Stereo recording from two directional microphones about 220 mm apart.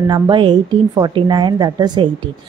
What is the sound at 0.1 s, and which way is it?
Speech, 20° right (ahead or behind).